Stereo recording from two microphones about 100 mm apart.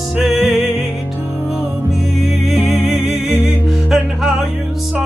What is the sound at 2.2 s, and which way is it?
Music, 5° right (ahead or behind).